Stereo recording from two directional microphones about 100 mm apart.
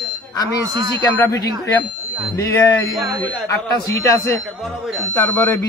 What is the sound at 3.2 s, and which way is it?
Speech, 25° left (ahead or behind).